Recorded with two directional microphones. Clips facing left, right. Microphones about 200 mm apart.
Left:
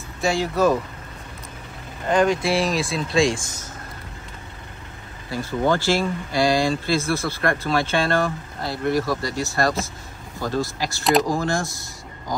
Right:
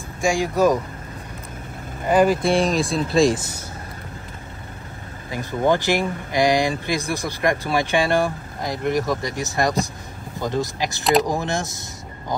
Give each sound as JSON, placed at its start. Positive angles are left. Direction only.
{"t": 0.2, "sound": "speech", "side_deg": -10}
{"t": 2.0, "sound": "speech", "side_deg": -5}
{"t": 5.3, "sound": "speech", "side_deg": -15}